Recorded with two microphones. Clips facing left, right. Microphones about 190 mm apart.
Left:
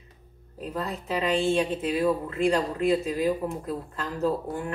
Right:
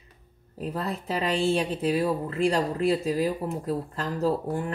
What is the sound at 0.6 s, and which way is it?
Speech, 35° right (ahead or behind).